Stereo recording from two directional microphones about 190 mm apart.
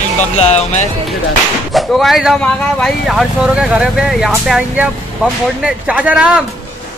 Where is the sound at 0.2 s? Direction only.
35° left (ahead or behind).